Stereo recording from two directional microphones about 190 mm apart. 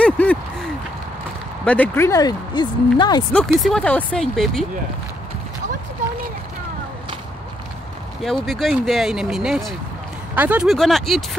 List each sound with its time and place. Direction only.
0.0 s a sound: 10° left (ahead or behind)
1.6 s speech: 5° left (ahead or behind); by 3.3 s 20° left (ahead or behind)
3.3 s speech: 5° left (ahead or behind)
8.2 s speech: centre (ahead or behind)